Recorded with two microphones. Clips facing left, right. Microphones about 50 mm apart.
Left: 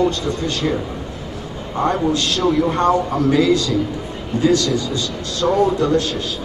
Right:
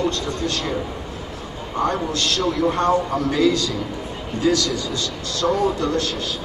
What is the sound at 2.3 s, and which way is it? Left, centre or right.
Speech, centre.